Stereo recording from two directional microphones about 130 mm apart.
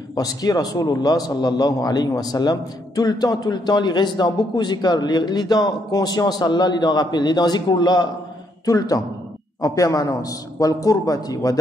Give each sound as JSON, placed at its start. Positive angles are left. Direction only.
{"t": 0.1, "sound": "a man's voice", "side_deg": 30}